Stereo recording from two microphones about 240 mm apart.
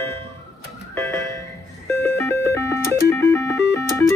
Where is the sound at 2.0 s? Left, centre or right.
Centre.